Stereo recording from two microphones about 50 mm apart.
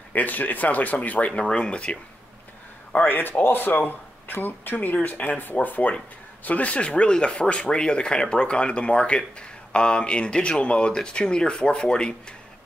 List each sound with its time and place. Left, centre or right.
0.1 s speech: left
1.4 s speech: left
3.1 s speech: left; by 12.4 s centre